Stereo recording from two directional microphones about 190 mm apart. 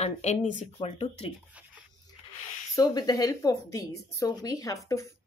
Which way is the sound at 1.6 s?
5° right (ahead or behind).